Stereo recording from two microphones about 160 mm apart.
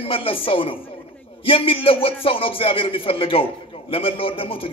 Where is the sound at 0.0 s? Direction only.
35° left (ahead or behind).